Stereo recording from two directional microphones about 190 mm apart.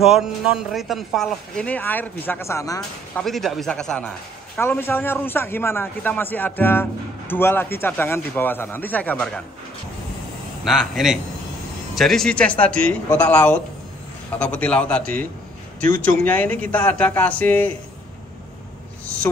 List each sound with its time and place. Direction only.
0.0 s speech: centre (ahead or behind); by 2.8 s 15° left (ahead or behind)
3.2 s a man's voice: centre (ahead or behind)
10.6 s a man's voice: centre (ahead or behind)